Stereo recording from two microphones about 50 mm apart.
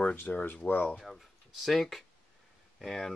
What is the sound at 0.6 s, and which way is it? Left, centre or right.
Speech, left.